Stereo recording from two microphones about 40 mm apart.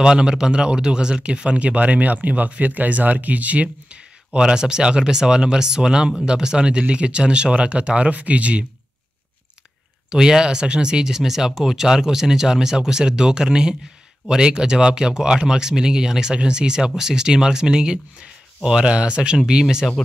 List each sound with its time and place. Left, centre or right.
0.0 s speech: right
10.0 s speech: centre